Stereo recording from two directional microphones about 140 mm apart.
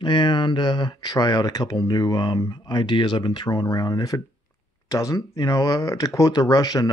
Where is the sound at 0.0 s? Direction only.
35° left (ahead or behind).